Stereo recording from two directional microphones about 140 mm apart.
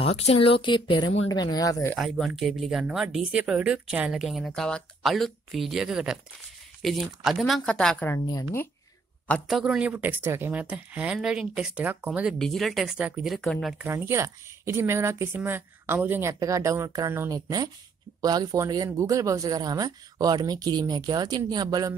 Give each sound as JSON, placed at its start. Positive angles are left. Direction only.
{"t": 0.0, "sound": "speech", "side_deg": 45}
{"t": 2.0, "sound": "speech", "side_deg": 0}
{"t": 9.5, "sound": "a woman's voice", "side_deg": 0}
{"t": 13.8, "sound": "speech", "side_deg": -20}